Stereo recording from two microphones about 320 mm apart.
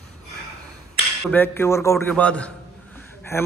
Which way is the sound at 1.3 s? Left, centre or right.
Centre.